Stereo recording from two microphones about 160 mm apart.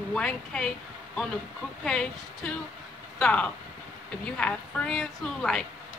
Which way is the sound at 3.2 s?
5° left (ahead or behind).